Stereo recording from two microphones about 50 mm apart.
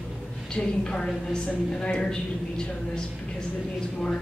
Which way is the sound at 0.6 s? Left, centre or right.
Centre.